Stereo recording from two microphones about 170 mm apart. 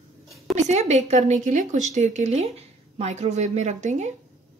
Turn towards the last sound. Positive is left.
turn(degrees=-45)  # may be behind; listen again after turning